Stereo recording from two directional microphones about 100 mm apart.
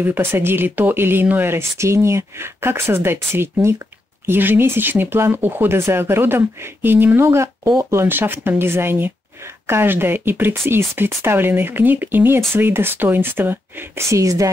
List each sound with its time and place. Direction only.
0.0 s speech: 20° right (ahead or behind)